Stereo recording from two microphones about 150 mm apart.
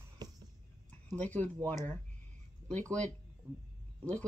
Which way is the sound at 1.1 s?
10° left (ahead or behind).